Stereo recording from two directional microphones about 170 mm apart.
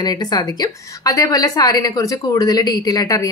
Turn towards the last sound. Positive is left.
turn(degrees=20)  # may be behind; listen again after turning